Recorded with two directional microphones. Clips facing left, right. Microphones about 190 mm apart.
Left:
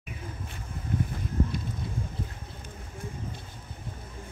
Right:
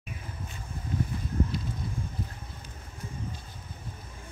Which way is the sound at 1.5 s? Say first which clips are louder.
Even; 55° left (ahead or behind).